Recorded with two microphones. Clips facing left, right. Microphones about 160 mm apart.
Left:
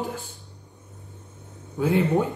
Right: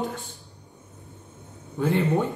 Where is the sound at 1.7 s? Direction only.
Centre (ahead or behind).